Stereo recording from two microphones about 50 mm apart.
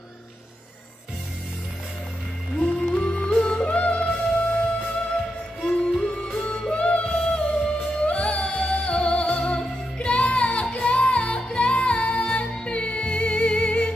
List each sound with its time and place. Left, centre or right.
2.6 s music: left
5.7 s music: centre